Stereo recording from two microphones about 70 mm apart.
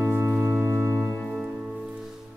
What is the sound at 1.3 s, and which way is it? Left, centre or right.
Music, centre.